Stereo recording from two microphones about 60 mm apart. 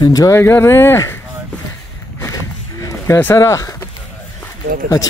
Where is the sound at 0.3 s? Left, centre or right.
Left.